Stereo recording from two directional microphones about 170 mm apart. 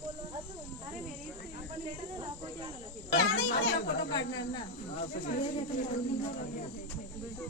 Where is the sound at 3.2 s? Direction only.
75° left (ahead or behind).